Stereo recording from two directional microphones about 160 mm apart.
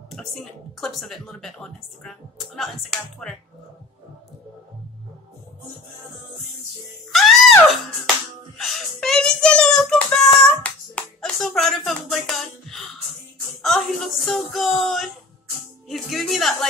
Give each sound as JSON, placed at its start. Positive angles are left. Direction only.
{"t": 0.1, "sound": "a child's voice", "side_deg": 0}
{"t": 7.1, "sound": "music", "side_deg": 0}
{"t": 8.5, "sound": "a child's voice", "side_deg": 0}